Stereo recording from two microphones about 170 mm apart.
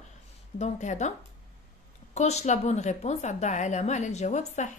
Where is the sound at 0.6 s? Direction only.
45° left (ahead or behind).